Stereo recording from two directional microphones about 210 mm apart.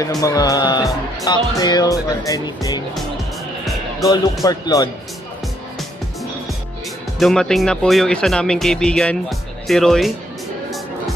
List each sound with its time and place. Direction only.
0.2 s speech: 15° left (ahead or behind)
4.0 s speech: 15° left (ahead or behind)
7.2 s speech: centre (ahead or behind)